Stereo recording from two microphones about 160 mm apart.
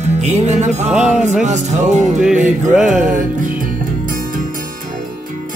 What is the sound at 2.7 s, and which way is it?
Music, 5° right (ahead or behind).